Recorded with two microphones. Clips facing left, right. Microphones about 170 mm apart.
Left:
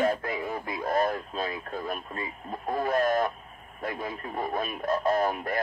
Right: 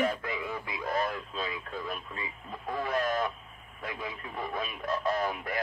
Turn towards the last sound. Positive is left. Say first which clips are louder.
# left 5 dB
turn(degrees=45)  # may be behind; listen again after turning